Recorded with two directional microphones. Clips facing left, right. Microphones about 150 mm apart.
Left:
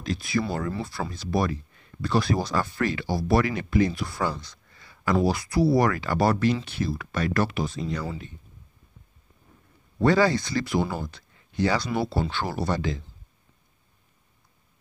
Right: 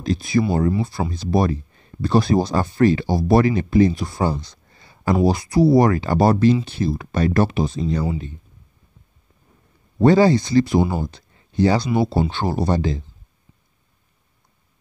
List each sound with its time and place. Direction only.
0.0 s speech: 30° right (ahead or behind)
9.9 s speech: 25° right (ahead or behind)
11.1 s a sound: 25° right (ahead or behind)
11.9 s speech: 20° right (ahead or behind)